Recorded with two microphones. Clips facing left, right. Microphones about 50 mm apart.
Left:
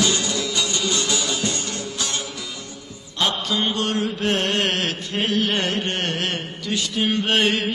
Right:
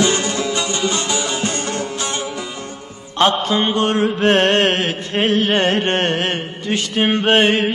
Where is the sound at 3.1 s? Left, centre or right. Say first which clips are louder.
Right 7 dB; right.